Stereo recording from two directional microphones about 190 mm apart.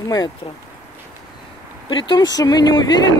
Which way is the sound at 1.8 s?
25° left (ahead or behind).